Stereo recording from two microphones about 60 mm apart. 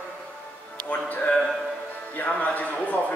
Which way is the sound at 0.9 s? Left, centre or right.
Left.